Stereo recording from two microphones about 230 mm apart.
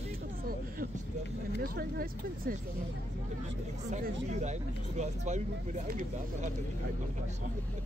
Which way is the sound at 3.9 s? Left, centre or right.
Right.